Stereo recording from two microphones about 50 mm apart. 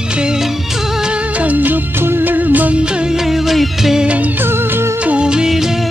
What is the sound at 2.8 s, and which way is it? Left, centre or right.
Music of bollywood, centre.